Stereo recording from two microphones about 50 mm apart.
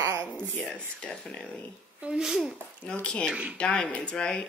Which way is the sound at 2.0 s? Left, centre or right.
Centre.